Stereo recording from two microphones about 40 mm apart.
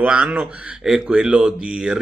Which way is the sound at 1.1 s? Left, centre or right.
Right.